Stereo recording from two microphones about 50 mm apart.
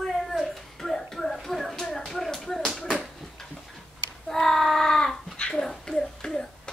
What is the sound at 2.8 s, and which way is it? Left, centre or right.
Bouncing, centre.